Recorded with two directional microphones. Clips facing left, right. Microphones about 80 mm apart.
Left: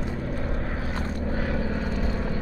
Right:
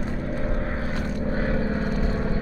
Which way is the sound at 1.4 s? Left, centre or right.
Right.